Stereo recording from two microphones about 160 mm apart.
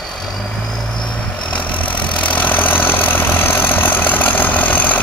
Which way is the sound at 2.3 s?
10° left (ahead or behind).